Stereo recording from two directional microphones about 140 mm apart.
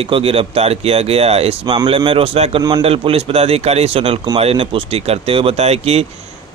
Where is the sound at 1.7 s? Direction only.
30° right (ahead or behind).